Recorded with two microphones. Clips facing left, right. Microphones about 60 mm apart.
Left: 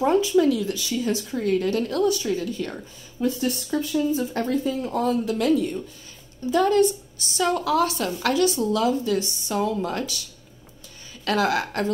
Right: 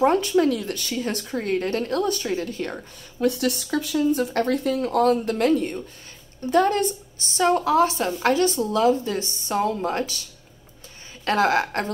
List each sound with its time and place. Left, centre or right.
0.0 s speech: right
3.2 s a woman's voice: right
11.2 s a woman's voice: right